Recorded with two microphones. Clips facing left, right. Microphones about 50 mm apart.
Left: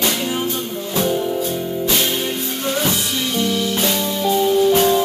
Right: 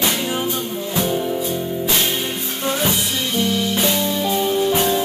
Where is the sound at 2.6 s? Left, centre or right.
Centre.